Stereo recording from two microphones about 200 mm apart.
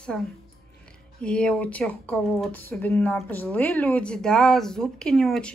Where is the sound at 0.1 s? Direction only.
5° left (ahead or behind).